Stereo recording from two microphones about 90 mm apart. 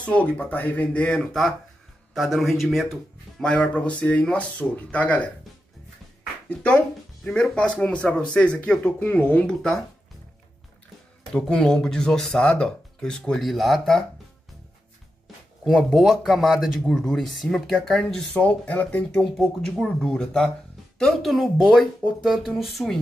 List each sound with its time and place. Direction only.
0.0 s speech: 15° left (ahead or behind)
2.1 s speech: centre (ahead or behind)
3.4 s speech: 10° left (ahead or behind)
7.2 s speech: 5° left (ahead or behind)
11.3 s speech: 10° left (ahead or behind)
15.7 s speech: centre (ahead or behind); by 19.2 s 15° left (ahead or behind)
19.3 s speech: 5° left (ahead or behind)